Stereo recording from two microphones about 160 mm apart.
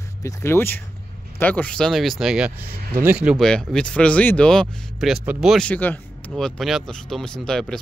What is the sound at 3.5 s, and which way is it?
Speech, 5° left (ahead or behind).